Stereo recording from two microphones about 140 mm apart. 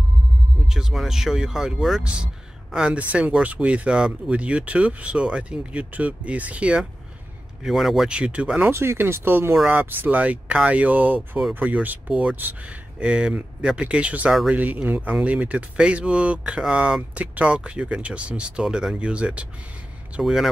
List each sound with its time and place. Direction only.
0.7 s speech: 5° right (ahead or behind)